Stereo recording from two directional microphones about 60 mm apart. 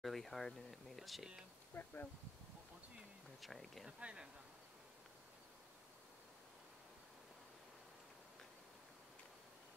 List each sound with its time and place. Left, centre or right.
0.0 s speech: centre
1.7 s speech: left
3.3 s speech: centre
4.0 s speech: centre